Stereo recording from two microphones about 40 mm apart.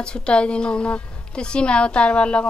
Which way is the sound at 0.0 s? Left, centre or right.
Left.